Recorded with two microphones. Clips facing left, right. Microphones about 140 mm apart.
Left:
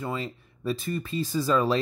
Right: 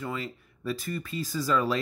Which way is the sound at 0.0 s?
25° left (ahead or behind).